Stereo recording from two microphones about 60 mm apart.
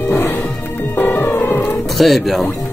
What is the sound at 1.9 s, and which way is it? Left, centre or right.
Speech, centre.